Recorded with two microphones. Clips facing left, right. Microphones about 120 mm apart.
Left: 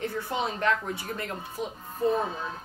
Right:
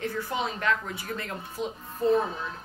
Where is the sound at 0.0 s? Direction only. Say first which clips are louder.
Even; 25° left (ahead or behind).